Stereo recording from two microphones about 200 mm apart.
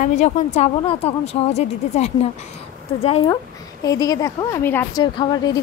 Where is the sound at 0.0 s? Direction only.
35° left (ahead or behind).